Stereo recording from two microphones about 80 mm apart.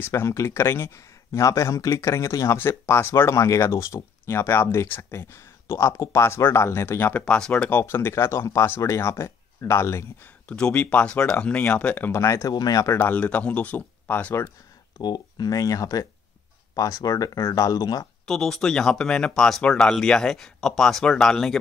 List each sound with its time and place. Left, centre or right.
0.1 s speech: left; by 7.7 s centre
7.7 s speech: left
10.5 s speech: centre
12.1 s speech: left
12.5 s speech: left
12.9 s speech: left
15.0 s speech: left
18.2 s speech: centre